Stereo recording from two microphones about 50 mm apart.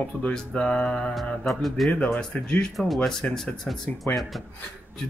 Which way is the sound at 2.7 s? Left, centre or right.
Centre.